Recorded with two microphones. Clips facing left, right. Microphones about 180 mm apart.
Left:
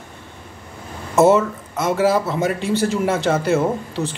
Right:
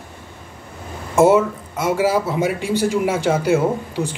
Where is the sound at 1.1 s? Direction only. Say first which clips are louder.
Even; 10° right (ahead or behind).